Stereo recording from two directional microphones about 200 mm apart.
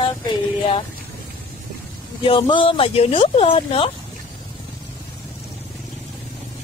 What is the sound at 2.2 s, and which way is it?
Speech, 25° left (ahead or behind).